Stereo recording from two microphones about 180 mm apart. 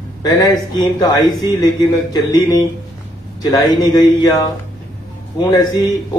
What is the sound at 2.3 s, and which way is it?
Speech, 20° left (ahead or behind).